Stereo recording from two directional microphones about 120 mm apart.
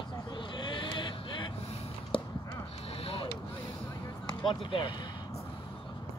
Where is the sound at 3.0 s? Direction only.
55° left (ahead or behind).